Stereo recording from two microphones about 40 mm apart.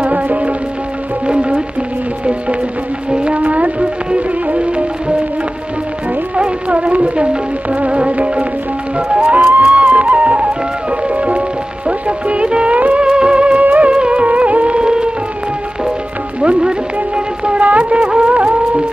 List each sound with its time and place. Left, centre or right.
0.0 s music: right
3.1 s music: right
3.3 s music: right
6.3 s music: right
16.3 s music: right